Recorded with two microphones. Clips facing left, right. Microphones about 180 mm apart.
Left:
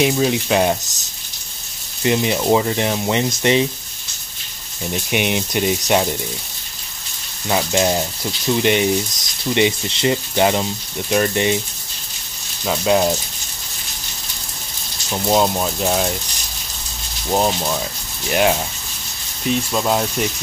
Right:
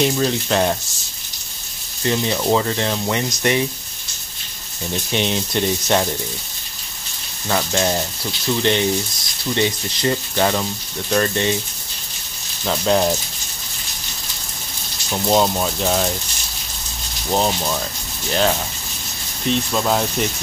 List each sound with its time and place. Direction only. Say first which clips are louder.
0.0 s speech: left 2 dB; 10° left (ahead or behind)
2.0 s speech: left 2 dB; 15° left (ahead or behind)
5.1 s speech: left 1 dB; 15° left (ahead or behind)
7.4 s speech: left 2 dB; 15° left (ahead or behind)
12.6 s speech: left 1 dB; 5° left (ahead or behind)
15.0 s speech: even; 5° left (ahead or behind)
17.3 s speech: left 1 dB; 5° left (ahead or behind)
19.5 s speech: left 1 dB; 5° left (ahead or behind)